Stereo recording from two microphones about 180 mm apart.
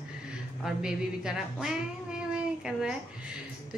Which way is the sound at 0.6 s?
5° right (ahead or behind).